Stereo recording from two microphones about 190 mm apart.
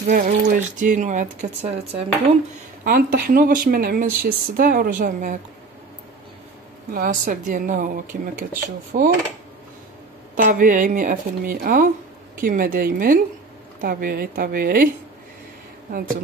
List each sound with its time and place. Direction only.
0.1 s speech: 40° right (ahead or behind)
2.8 s speech: 50° right (ahead or behind)
6.9 s speech: 45° right (ahead or behind)
10.3 s speech: 45° right (ahead or behind)